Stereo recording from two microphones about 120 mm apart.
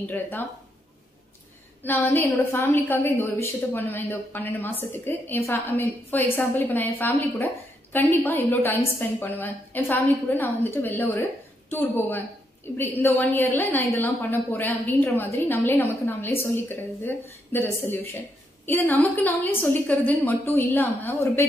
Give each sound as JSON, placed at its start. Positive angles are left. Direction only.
{"t": 0.0, "sound": "a woman's voice", "side_deg": 15}
{"t": 1.8, "sound": "a woman's voice", "side_deg": 15}